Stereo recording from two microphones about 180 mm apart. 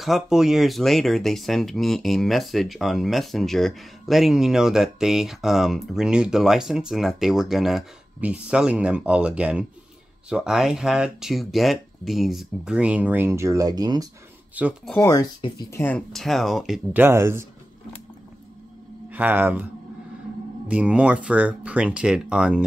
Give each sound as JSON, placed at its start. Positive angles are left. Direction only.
{"t": 0.0, "sound": "speech", "side_deg": 0}
{"t": 14.6, "sound": "speech", "side_deg": -10}
{"t": 15.0, "sound": "speech", "side_deg": 15}
{"t": 19.0, "sound": "speech", "side_deg": -10}